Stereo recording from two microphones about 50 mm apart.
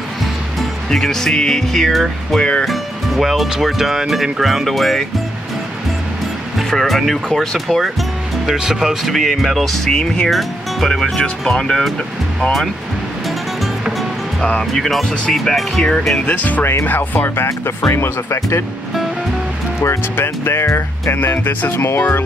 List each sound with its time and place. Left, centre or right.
0.8 s speech: centre
6.7 s speech: centre
8.5 s speech: centre
9.8 s speech: centre
11.4 s speech: centre
14.6 s speech: centre
16.3 s speech: left
17.5 s speech: left
20.2 s music: left
21.7 s speech: left